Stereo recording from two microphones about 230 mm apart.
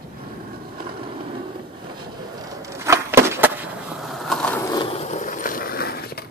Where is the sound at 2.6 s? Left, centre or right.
Centre.